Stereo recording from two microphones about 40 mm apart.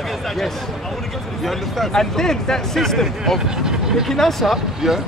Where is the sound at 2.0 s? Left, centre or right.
Centre.